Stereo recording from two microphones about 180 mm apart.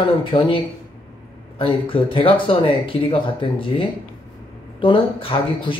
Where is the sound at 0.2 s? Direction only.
30° left (ahead or behind).